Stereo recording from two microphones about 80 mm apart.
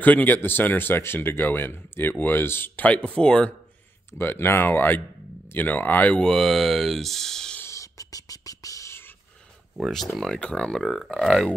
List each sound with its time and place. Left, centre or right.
0.0 s speech: left
4.2 s speech: left
6.1 s speech: centre
7.6 s beatboxing: left
9.8 s speech: centre